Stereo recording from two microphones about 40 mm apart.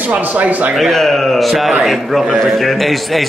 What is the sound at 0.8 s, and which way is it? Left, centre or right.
A man's voice, centre.